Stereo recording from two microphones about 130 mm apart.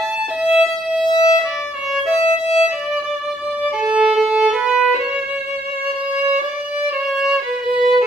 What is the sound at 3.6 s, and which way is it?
Violin, 5° right (ahead or behind).